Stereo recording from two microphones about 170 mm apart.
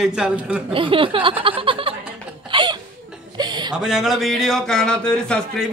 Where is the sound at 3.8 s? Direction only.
Centre (ahead or behind).